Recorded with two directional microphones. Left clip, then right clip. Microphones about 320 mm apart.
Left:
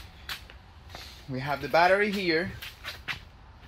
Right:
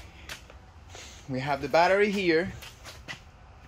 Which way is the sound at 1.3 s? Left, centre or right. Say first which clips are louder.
Right 1 dB; centre.